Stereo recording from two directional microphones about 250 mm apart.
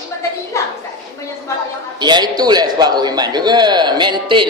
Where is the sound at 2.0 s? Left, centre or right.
Centre.